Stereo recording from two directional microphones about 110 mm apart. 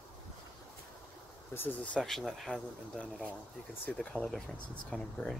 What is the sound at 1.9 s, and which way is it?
Speech, centre (ahead or behind).